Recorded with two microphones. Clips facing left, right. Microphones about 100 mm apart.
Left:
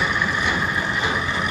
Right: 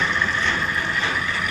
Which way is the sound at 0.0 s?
15° left (ahead or behind).